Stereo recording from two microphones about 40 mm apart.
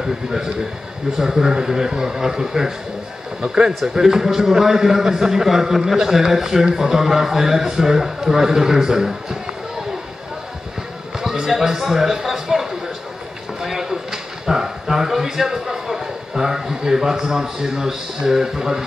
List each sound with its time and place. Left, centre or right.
0.0 s a man's voice: centre
11.4 s a man's voice: centre
13.6 s a sound: centre